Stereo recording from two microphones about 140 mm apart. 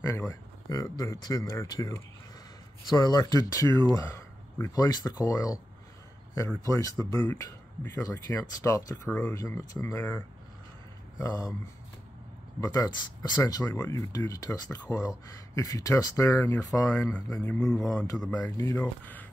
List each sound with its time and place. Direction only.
0.0 s speech: 25° left (ahead or behind)
6.6 s speech: 25° left (ahead or behind)
12.5 s speech: 25° left (ahead or behind)
17.5 s speech: 5° left (ahead or behind)
17.8 s speech: 25° left (ahead or behind)
18.2 s speech: 10° left (ahead or behind)